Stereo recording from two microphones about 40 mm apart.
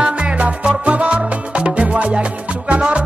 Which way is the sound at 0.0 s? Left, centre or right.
Right.